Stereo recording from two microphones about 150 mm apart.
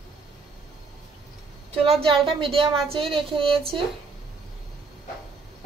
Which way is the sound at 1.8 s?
40° right (ahead or behind).